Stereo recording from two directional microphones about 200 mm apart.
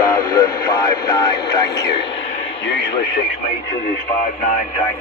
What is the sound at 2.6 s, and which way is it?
Speech, 60° left (ahead or behind).